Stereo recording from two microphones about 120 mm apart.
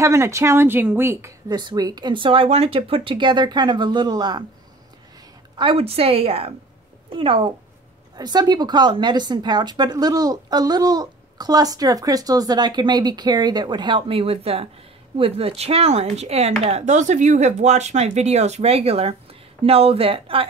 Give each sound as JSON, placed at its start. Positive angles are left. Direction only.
{"t": 0.0, "sound": "speech", "side_deg": -25}
{"t": 1.5, "sound": "a woman's voice", "side_deg": -35}
{"t": 5.6, "sound": "a woman's voice", "side_deg": -50}
{"t": 8.2, "sound": "a woman's voice", "side_deg": -35}